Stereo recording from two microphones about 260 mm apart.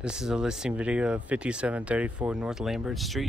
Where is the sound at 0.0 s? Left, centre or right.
Centre.